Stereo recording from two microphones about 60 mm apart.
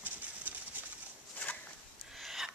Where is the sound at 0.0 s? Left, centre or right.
Right.